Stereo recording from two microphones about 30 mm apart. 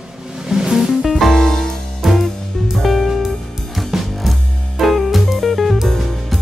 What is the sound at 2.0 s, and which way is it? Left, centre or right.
Music, centre.